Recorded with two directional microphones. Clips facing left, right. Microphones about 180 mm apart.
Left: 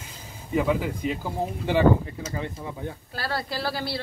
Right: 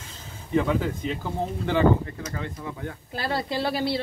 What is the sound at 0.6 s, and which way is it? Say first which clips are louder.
Speech: even; 10° left (ahead or behind).